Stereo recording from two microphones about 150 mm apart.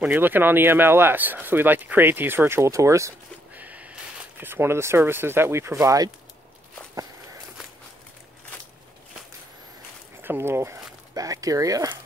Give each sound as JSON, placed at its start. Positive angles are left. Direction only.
{"t": 0.0, "sound": "speech", "side_deg": -10}
{"t": 10.2, "sound": "speech", "side_deg": -15}